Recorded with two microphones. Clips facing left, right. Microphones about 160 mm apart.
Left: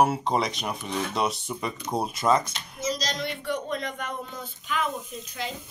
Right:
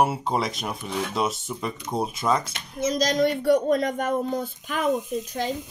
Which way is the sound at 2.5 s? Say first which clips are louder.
Right 5 dB; 55° right (ahead or behind).